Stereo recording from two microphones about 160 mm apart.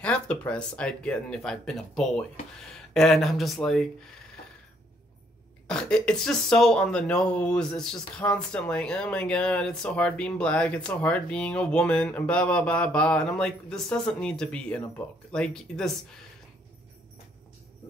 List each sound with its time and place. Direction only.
0.0 s speech: 10° left (ahead or behind)
5.7 s speech: 5° left (ahead or behind)